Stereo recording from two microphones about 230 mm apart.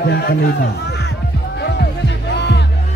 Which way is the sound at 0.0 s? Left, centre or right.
Left.